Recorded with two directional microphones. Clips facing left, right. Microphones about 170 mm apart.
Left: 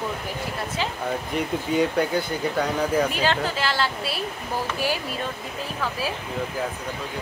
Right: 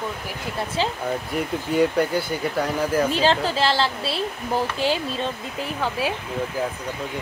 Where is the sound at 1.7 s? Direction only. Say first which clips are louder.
Right 2 dB; 5° right (ahead or behind).